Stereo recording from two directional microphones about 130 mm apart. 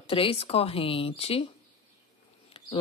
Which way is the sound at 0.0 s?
45° left (ahead or behind).